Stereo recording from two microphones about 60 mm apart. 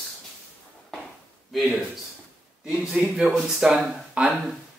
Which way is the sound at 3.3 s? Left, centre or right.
Centre.